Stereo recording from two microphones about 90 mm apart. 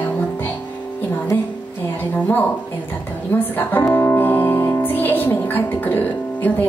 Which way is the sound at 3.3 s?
20° left (ahead or behind).